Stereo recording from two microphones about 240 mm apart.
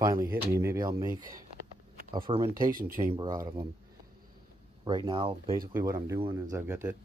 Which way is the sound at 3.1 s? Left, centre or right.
Centre.